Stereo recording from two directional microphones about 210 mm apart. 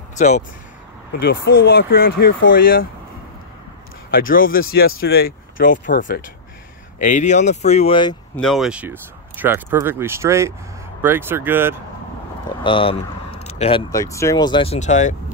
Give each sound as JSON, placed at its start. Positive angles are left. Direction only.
{"t": 0.2, "sound": "speech", "side_deg": 35}
{"t": 1.2, "sound": "speech", "side_deg": 50}
{"t": 4.1, "sound": "speech", "side_deg": 40}
{"t": 8.4, "sound": "speech", "side_deg": 0}
{"t": 12.4, "sound": "speech", "side_deg": 25}